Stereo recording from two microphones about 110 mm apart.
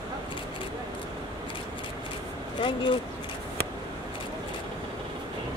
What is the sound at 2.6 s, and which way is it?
Speech, 50° left (ahead or behind).